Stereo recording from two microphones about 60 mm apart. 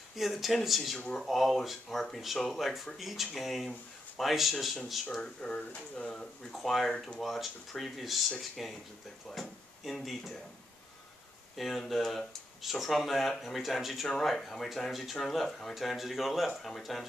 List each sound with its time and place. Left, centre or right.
0.1 s speech: centre
0.9 s speech: centre
1.2 s speech: centre
5.1 s speech: centre
6.5 s speech: centre
11.5 s speech: centre